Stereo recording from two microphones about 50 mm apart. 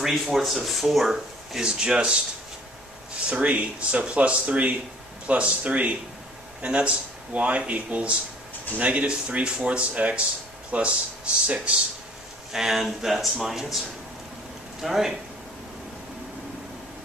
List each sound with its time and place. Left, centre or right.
0.0 s speech: centre
1.6 s speech: centre
3.3 s speech: right
12.5 s speech: centre
14.8 s speech: centre